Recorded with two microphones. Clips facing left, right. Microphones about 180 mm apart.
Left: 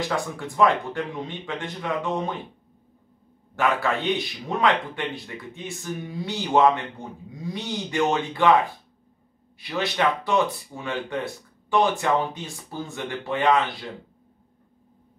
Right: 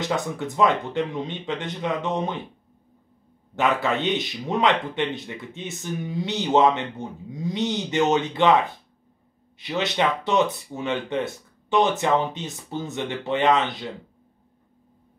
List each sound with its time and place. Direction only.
0.1 s speech: 20° right (ahead or behind)
3.5 s speech: 20° right (ahead or behind)
9.6 s speech: 20° right (ahead or behind)